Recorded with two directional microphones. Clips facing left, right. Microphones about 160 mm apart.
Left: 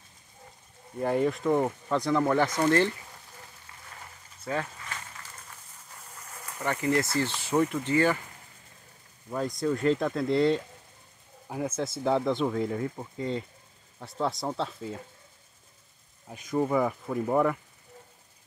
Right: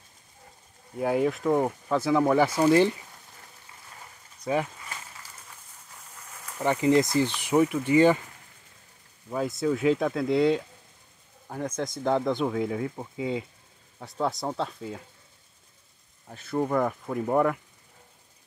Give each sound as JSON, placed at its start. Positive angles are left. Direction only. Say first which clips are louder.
{"t": 0.9, "sound": "speech", "louder": "right 1 dB", "side_deg": -5}
{"t": 4.4, "sound": "a sound", "louder": "right 5 dB", "side_deg": -15}
{"t": 6.6, "sound": "speech", "louder": "right 5 dB", "side_deg": -20}
{"t": 9.3, "sound": "speech", "louder": "right 2 dB", "side_deg": -5}
{"t": 16.3, "sound": "speech", "louder": "even", "side_deg": 10}